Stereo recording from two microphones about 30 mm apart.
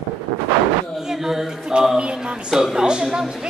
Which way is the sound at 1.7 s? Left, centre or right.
Right.